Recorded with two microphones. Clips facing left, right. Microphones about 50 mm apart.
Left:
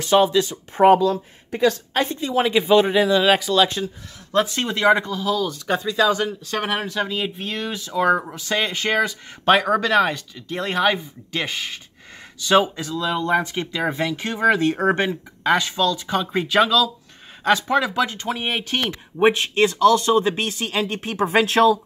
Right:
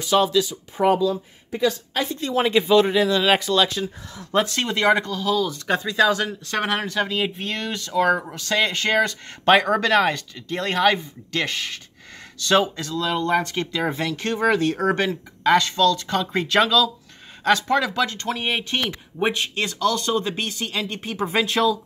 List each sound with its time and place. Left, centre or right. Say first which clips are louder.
0.1 s speech: left 3 dB; centre
0.5 s speech: left 5 dB; left
2.1 s speech: right 2 dB; centre
4.6 s speech: left 2 dB; centre
5.2 s speech: even; centre
14.4 s speech: left 3 dB; left
21.3 s speech: left 5 dB; left